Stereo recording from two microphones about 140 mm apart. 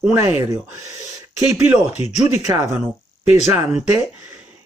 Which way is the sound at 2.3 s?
15° right (ahead or behind).